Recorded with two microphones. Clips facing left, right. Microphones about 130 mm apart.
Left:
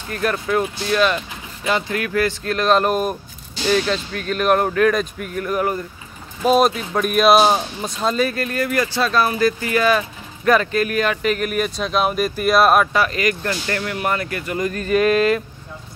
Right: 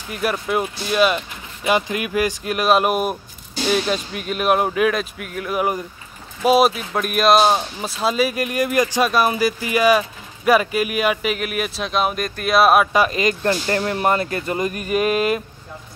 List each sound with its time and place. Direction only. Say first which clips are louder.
0.1 s speech: left 1 dB; 10° right (ahead or behind)
12.9 s speech: right 1 dB; 20° right (ahead or behind)